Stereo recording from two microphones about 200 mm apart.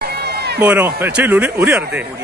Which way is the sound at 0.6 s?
10° right (ahead or behind).